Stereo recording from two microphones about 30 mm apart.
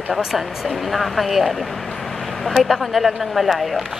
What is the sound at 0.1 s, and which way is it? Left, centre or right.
Speech, centre.